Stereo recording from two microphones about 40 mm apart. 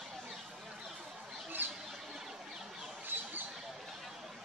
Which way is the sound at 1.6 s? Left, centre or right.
Right.